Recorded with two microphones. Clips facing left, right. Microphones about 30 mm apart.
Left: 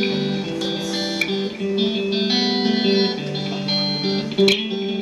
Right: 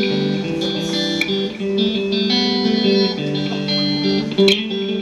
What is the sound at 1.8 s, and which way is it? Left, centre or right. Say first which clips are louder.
Music: right 2 dB; centre.